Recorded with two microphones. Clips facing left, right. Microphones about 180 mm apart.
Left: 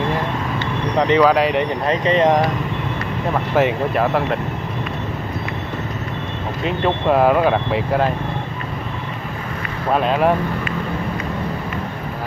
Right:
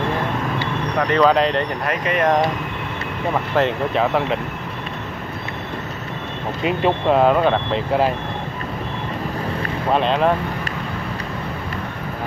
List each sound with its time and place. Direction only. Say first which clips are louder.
0.9 s speech: left 4 dB; 20° left (ahead or behind)
1.2 s speech: left 1 dB; 5° left (ahead or behind)
1.9 s speech: left 4 dB; 25° left (ahead or behind)
3.9 s speech: left 1 dB; centre (ahead or behind)
7.1 s speech: left 1 dB; 5° left (ahead or behind)
9.9 s speech: left 1 dB; 5° left (ahead or behind)